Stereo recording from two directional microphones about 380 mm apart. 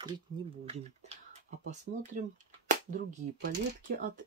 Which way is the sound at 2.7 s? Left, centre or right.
Centre.